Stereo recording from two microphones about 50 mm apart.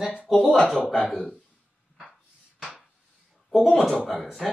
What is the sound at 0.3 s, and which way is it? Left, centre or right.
Speech, centre.